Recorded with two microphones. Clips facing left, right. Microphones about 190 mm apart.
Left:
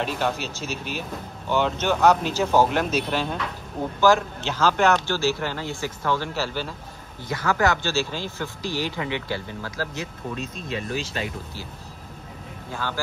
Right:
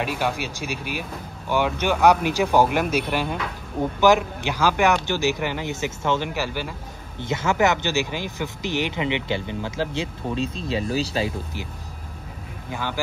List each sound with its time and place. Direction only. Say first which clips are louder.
0.0 s speech: right 1 dB; 10° right (ahead or behind); by 11.1 s 35° right (ahead or behind)
12.7 s speech: right 1 dB; 15° right (ahead or behind)